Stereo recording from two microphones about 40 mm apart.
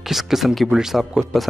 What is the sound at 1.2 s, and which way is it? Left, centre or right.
Speech, right.